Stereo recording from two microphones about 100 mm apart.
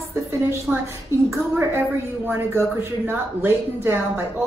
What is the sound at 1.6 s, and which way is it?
A woman's voice, 20° right (ahead or behind).